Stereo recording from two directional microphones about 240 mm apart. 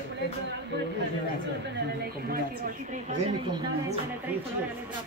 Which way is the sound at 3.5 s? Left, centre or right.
Centre.